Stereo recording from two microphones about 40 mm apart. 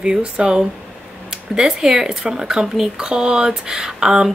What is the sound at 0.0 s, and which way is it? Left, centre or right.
Speech, right.